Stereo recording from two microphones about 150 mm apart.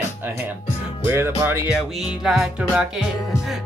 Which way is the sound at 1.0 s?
15° right (ahead or behind).